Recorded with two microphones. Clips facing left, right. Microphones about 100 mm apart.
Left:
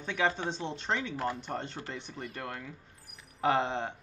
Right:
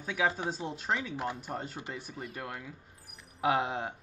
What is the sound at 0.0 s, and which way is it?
Speech, 5° right (ahead or behind).